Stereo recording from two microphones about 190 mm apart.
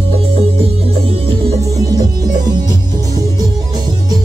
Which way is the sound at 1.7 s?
20° right (ahead or behind).